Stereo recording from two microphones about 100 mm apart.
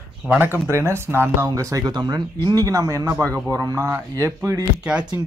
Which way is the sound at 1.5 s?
35° right (ahead or behind).